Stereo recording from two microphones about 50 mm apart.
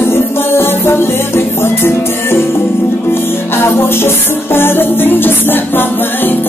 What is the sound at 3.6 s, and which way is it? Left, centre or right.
Music, left.